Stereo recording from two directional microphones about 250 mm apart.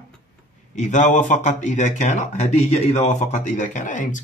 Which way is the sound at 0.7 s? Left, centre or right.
Left.